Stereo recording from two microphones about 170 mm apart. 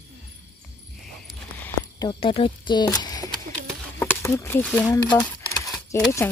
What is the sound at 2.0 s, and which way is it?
Speech, 30° left (ahead or behind).